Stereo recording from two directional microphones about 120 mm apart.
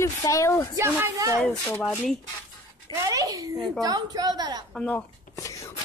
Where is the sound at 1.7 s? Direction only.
10° left (ahead or behind).